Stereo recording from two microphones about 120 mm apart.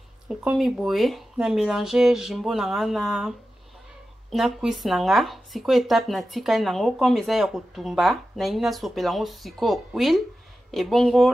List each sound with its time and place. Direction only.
0.3 s speech: 5° right (ahead or behind)